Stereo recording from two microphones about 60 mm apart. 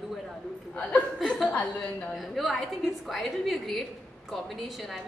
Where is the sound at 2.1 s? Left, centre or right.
Centre.